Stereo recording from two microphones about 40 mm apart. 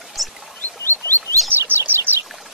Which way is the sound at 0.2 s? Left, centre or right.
Centre.